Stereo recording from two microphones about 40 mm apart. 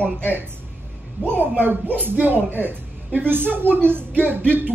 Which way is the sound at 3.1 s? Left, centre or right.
Right.